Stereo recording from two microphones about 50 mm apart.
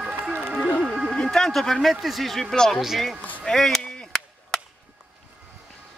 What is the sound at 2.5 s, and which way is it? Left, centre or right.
Speech, centre.